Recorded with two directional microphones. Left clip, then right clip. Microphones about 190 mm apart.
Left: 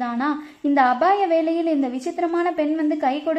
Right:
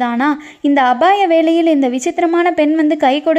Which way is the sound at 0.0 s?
35° right (ahead or behind).